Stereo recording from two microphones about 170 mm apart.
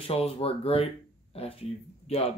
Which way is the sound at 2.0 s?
40° left (ahead or behind).